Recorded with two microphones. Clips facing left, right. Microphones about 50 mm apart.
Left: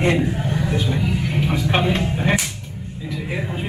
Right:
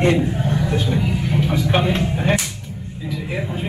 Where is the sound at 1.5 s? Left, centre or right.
Centre.